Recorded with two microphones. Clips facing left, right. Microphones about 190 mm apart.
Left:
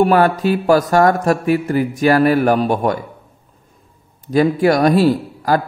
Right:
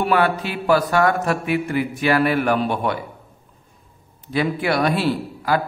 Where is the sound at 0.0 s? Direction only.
40° left (ahead or behind).